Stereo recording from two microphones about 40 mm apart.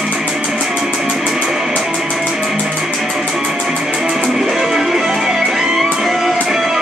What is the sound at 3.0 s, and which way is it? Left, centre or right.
Music, centre.